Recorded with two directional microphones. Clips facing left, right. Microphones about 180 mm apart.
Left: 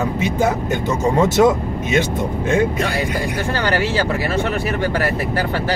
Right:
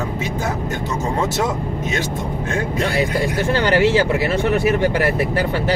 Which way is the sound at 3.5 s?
20° right (ahead or behind).